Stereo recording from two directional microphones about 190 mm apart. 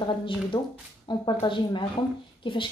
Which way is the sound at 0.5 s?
20° left (ahead or behind).